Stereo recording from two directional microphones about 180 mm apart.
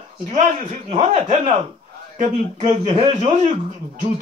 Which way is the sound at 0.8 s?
40° right (ahead or behind).